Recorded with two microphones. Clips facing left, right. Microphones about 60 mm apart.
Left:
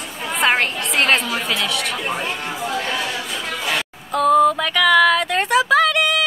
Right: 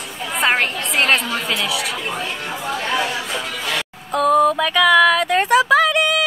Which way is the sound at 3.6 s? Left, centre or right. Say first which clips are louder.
Left 1 dB; centre.